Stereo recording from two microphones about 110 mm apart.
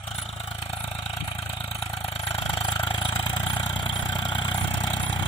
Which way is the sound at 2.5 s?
50° left (ahead or behind).